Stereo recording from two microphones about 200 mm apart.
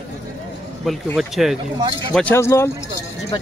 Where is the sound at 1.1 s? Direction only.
Centre (ahead or behind).